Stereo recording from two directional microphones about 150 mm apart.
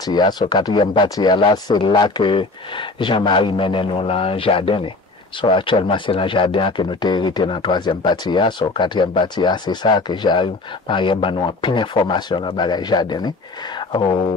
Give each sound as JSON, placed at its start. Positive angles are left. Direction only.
{"t": 0.0, "sound": "speech", "side_deg": 30}